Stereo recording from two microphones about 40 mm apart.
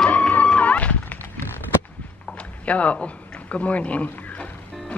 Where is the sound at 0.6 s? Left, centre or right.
Left.